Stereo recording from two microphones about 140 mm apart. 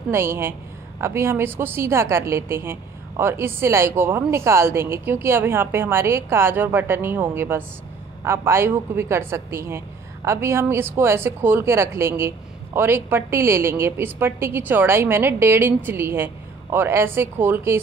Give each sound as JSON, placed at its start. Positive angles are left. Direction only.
{"t": 0.1, "sound": "a woman's voice", "side_deg": -15}